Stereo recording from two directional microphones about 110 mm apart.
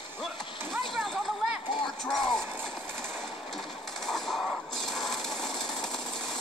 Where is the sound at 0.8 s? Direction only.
Centre (ahead or behind).